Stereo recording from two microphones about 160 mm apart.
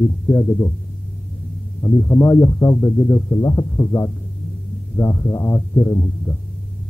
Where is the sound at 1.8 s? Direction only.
20° left (ahead or behind).